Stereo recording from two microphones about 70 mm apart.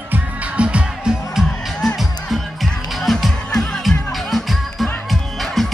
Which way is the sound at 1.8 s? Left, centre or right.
Centre.